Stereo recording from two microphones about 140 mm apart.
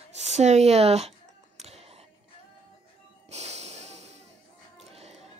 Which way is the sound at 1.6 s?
50° right (ahead or behind).